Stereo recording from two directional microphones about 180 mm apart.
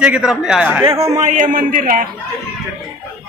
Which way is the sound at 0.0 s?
5° right (ahead or behind).